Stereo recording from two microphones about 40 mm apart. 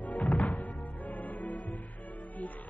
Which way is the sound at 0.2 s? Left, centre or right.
Centre.